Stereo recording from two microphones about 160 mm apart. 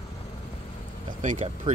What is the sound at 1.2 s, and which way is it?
Speech, 50° right (ahead or behind).